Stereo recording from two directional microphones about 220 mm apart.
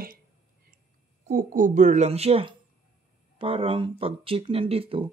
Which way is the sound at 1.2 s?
40° right (ahead or behind).